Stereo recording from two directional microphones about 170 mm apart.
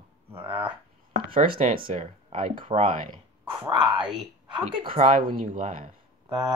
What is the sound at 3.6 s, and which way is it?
Speech, 30° right (ahead or behind).